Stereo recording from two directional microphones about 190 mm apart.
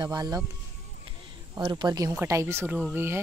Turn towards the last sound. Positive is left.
turn(degrees=-10)  # may be behind; listen again after turning